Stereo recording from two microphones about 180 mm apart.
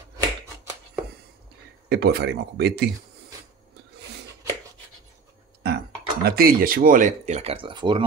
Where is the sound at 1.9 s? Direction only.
65° right (ahead or behind).